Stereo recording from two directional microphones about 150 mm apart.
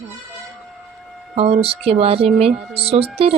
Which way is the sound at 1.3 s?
40° right (ahead or behind).